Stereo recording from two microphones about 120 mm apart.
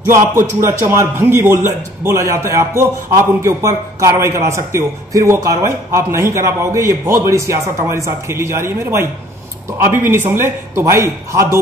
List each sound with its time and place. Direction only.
0.0 s a man's voice: 20° right (ahead or behind)